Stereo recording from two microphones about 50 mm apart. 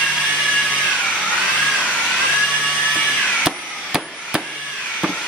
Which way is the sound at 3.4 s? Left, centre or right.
Centre.